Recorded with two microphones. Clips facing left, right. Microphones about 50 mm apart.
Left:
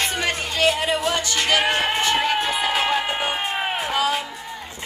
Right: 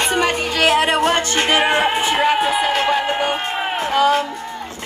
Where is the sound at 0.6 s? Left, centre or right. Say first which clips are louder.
Right 5 dB; right.